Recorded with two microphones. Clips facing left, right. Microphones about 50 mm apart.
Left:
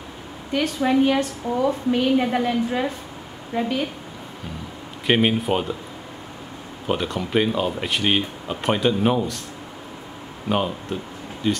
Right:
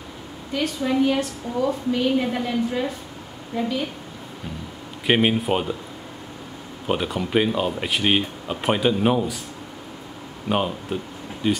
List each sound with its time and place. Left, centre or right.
0.5 s a woman's voice: left
5.0 s speech: centre
6.9 s speech: centre
10.5 s speech: centre